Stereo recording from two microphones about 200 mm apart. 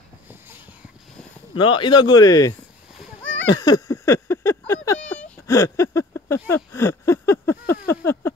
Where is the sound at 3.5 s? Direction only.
20° left (ahead or behind).